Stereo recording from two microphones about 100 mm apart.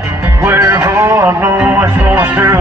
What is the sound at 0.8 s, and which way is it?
Music, 35° right (ahead or behind).